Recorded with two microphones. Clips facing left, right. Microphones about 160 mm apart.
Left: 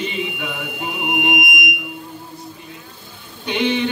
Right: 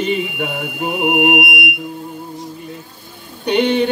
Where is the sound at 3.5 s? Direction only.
50° right (ahead or behind).